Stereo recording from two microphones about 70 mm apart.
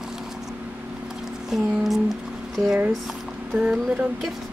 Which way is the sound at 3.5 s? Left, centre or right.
Centre.